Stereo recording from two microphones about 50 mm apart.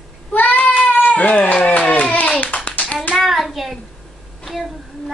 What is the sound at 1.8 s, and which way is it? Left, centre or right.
Hands, left.